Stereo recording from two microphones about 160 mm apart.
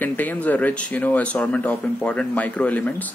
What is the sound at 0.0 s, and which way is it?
Speech, 10° left (ahead or behind).